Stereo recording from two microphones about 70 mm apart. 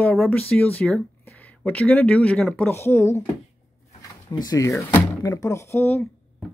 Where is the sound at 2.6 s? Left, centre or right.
Left.